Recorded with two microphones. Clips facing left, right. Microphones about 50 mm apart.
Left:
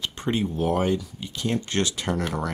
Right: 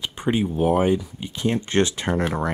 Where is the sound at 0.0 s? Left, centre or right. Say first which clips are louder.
Right 3 dB; centre.